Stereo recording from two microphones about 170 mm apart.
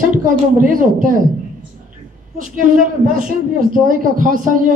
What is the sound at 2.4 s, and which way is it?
A man's voice, 50° right (ahead or behind).